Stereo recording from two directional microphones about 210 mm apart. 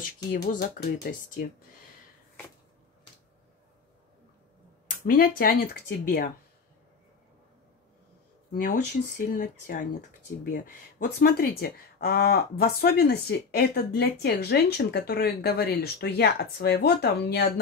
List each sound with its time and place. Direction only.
0.3 s speech: 40° left (ahead or behind)
4.8 s speech: 45° left (ahead or behind)
9.3 s speech: 40° left (ahead or behind)